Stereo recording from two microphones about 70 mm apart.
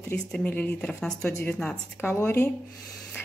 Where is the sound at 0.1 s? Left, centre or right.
Centre.